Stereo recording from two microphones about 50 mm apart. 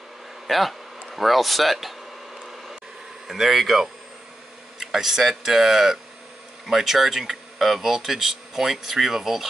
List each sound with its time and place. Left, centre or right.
0.5 s speech: centre
2.4 s mechanisms: centre
3.3 s speech: centre